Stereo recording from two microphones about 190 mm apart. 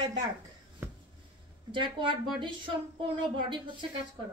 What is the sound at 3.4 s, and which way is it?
Speech, 25° right (ahead or behind).